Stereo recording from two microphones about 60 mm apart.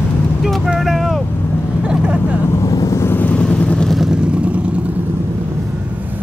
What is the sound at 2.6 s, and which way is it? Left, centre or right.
Vehicle, left.